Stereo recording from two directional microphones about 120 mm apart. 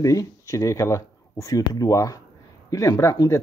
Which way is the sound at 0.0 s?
25° left (ahead or behind).